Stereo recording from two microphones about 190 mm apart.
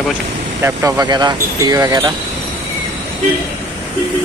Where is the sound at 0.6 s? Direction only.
15° right (ahead or behind).